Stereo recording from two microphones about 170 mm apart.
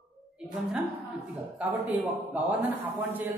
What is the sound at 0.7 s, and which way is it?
A woman's voice, 10° right (ahead or behind).